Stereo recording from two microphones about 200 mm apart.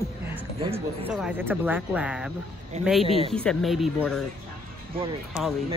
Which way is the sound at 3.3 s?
Centre (ahead or behind).